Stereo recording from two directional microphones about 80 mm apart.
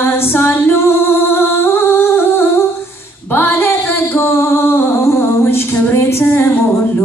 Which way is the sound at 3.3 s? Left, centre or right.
Left.